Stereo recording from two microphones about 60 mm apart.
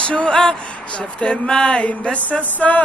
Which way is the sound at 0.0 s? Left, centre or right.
Centre.